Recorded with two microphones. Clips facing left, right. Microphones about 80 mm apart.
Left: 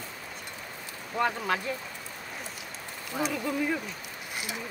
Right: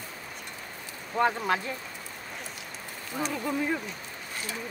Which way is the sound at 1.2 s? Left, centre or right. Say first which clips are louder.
Right 2 dB; right.